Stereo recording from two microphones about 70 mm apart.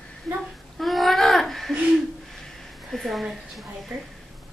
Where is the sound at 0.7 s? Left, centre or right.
Centre.